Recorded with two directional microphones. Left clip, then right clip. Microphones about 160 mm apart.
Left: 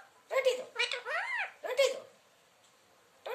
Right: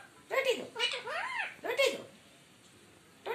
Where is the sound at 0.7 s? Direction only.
10° left (ahead or behind).